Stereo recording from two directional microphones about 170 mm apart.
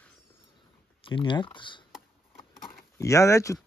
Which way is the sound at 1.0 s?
30° left (ahead or behind).